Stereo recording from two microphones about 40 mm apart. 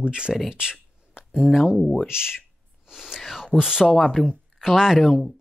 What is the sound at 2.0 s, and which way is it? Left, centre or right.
Speech, centre.